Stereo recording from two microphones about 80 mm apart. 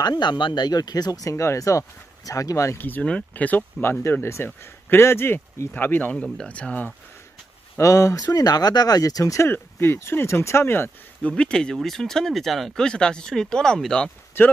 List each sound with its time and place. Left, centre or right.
0.0 s speech: left
1.3 s speech: left
2.8 s speech: left
4.0 s speech: left
6.2 s speech: centre
6.5 s speech: centre
7.7 s speech: left
9.5 s speech: left
11.2 s speech: centre